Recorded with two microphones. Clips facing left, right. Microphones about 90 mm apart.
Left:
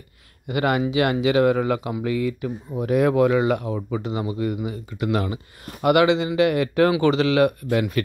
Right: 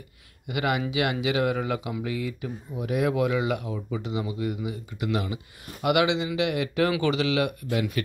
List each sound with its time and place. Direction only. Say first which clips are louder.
0.5 s speech: left 5 dB; 40° left (ahead or behind)